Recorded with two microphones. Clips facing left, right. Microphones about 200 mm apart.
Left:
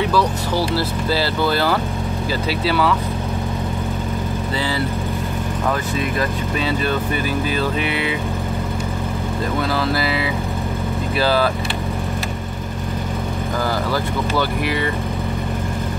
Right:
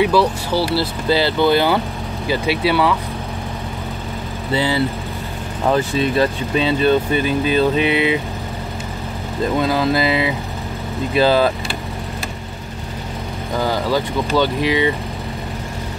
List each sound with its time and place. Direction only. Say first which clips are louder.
0.0 s vehicle: right 4 dB; 10° right (ahead or behind)
1.2 s speech: right 5 dB; 20° right (ahead or behind)
5.7 s speech: right 7 dB; 25° right (ahead or behind)
9.6 s speech: right 4 dB; 20° right (ahead or behind)
13.6 s speech: right 4 dB; 20° right (ahead or behind)